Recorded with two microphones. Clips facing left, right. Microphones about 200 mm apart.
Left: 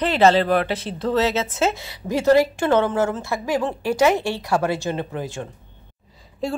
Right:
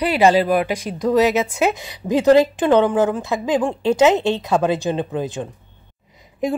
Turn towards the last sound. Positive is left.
turn(degrees=-20)  # may be behind; listen again after turning